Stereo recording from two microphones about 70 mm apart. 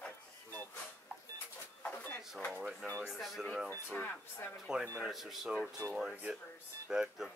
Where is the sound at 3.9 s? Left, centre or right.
Left.